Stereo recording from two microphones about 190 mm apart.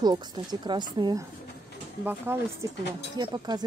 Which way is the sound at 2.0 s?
10° right (ahead or behind).